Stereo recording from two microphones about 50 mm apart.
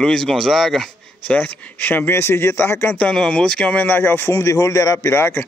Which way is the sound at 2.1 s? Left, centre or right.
Left.